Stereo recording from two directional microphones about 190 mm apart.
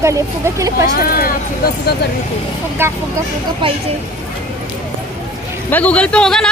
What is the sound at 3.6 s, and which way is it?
Speech, 25° right (ahead or behind).